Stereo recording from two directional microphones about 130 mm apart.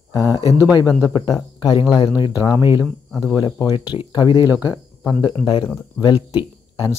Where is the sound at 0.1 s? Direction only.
30° left (ahead or behind).